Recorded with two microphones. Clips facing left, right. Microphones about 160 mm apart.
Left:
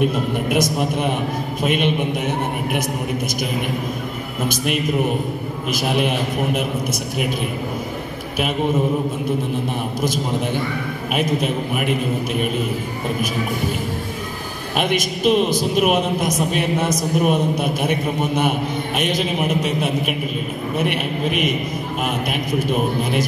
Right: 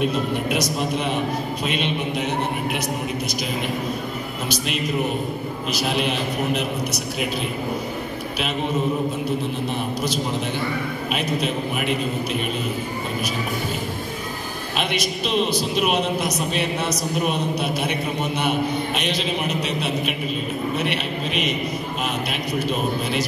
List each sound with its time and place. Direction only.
0.0 s a man's voice: 50° left (ahead or behind)
4.5 s a man's voice: 55° left (ahead or behind)
11.1 s a man's voice: 50° left (ahead or behind)
14.8 s a man's voice: 50° left (ahead or behind)